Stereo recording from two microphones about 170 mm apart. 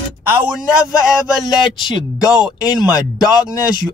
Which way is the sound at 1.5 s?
25° left (ahead or behind).